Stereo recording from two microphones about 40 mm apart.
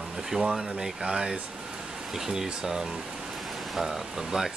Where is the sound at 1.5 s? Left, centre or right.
Centre.